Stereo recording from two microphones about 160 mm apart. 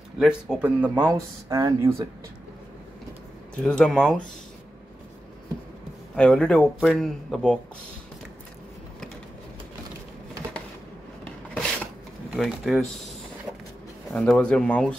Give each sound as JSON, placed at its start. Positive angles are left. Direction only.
{"t": 0.2, "sound": "speech", "side_deg": -5}
{"t": 3.6, "sound": "speech", "side_deg": 5}
{"t": 6.1, "sound": "speech", "side_deg": 5}
{"t": 11.2, "sound": "filing", "side_deg": 5}
{"t": 12.3, "sound": "speech", "side_deg": 0}
{"t": 14.1, "sound": "speech", "side_deg": 5}